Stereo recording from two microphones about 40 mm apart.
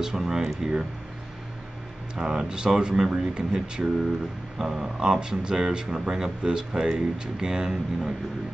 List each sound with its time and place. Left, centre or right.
0.0 s speech: centre
2.1 s speech: centre
4.6 s speech: centre